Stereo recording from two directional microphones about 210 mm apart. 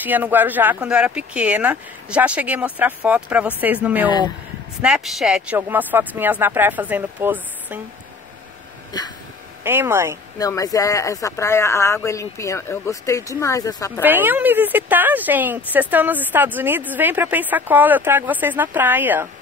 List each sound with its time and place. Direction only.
0.0 s speech: 10° right (ahead or behind)
9.6 s speech: 10° right (ahead or behind)
10.4 s speech: 15° left (ahead or behind)
14.0 s speech: 10° right (ahead or behind)